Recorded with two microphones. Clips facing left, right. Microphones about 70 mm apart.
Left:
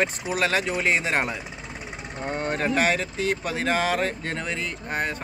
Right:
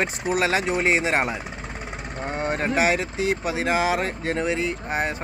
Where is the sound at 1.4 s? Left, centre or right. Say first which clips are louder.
Right 3 dB; right.